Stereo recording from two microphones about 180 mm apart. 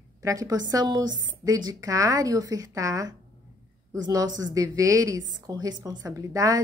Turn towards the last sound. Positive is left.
turn(degrees=-20)  # may be behind; listen again after turning